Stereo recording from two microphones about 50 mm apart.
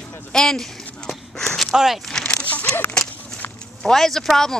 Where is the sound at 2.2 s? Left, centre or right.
Left.